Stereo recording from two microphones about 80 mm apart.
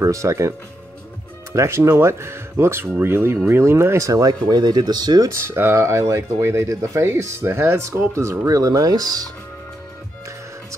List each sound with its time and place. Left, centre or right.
0.0 s speech: right
1.5 s speech: right
5.3 s speech: right